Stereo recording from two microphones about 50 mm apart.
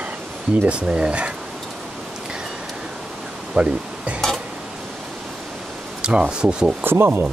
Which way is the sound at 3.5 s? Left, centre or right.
Right.